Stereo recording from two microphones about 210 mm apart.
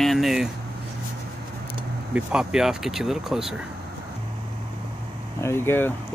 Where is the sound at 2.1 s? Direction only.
5° right (ahead or behind).